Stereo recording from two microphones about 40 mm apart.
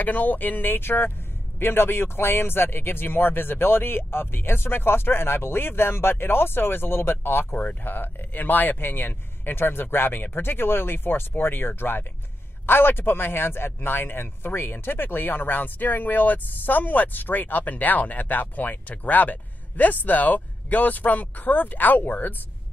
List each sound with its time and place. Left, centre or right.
0.0 s speech: left